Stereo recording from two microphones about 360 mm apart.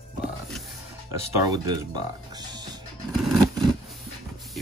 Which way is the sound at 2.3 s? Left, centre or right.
Centre.